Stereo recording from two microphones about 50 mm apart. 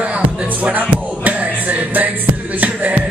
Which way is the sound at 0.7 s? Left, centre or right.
Right.